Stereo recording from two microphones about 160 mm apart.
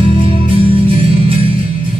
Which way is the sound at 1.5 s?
55° left (ahead or behind).